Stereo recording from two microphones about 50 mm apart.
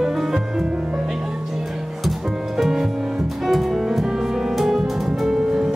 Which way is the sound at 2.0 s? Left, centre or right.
Centre.